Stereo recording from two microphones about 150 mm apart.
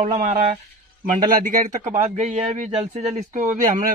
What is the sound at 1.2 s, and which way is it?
Speech, 60° right (ahead or behind).